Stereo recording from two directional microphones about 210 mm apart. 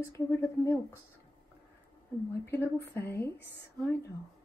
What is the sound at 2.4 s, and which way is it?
A woman's voice, 10° left (ahead or behind).